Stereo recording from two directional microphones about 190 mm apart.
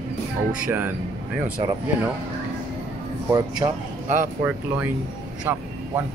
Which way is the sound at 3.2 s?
20° right (ahead or behind).